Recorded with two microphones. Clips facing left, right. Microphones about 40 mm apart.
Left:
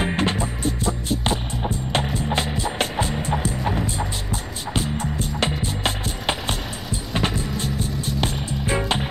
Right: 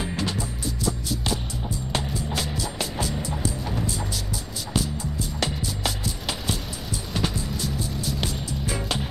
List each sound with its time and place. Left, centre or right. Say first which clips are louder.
0.0 s music: left 6 dB; left
5.4 s music: left 4 dB; left